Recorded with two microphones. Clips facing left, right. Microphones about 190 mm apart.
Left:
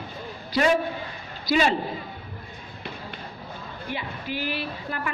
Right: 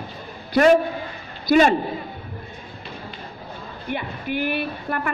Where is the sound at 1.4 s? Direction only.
50° right (ahead or behind).